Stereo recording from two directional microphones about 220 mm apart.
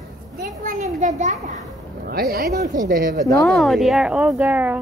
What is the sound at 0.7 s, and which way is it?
A child's voice, 35° right (ahead or behind).